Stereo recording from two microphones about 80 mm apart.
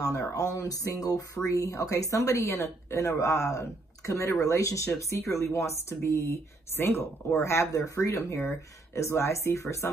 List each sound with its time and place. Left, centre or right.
0.0 s speech: left
6.8 s speech: left